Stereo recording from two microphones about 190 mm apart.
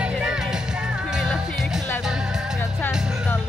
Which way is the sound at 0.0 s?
5° right (ahead or behind).